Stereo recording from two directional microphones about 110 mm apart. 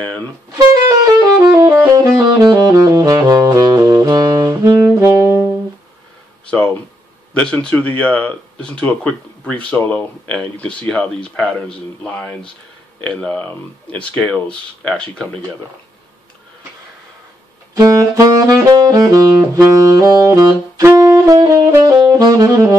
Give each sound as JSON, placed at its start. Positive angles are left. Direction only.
{"t": 0.6, "sound": "saxophone", "side_deg": -35}
{"t": 7.3, "sound": "speech", "side_deg": 10}
{"t": 17.7, "sound": "saxophone", "side_deg": -30}